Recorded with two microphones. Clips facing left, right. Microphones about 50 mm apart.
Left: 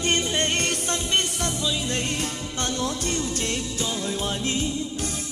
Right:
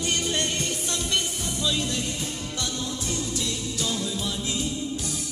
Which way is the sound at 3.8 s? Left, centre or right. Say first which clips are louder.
Right 2 dB; left.